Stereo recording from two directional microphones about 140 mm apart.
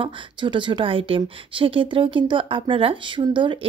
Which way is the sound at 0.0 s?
35° right (ahead or behind).